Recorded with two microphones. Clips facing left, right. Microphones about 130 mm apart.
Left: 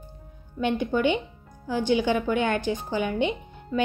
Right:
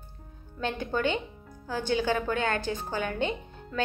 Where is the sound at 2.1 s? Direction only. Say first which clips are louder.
Left 4 dB; 40° right (ahead or behind).